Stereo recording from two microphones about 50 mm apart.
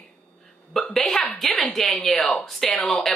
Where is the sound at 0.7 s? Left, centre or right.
Centre.